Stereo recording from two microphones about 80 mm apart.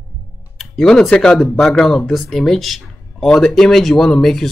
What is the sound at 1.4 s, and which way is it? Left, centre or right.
Speech, centre.